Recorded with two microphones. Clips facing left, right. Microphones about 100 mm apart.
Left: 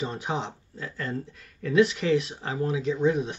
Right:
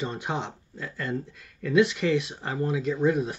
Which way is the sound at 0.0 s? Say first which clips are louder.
Even; centre (ahead or behind).